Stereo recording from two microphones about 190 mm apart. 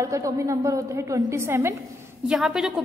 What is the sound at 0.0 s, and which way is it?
A woman's voice, 15° right (ahead or behind).